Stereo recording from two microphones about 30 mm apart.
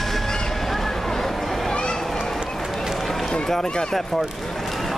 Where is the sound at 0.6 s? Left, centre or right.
Centre.